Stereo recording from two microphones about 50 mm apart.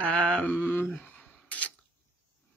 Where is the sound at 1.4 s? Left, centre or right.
Left.